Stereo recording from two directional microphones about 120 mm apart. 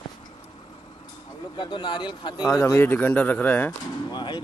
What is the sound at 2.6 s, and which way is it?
Speech, 20° left (ahead or behind).